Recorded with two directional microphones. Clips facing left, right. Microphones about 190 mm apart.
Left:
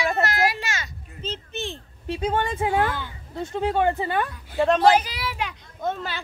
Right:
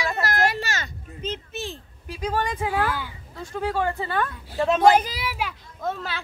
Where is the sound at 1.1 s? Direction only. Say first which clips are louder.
Right 1 dB; 10° right (ahead or behind).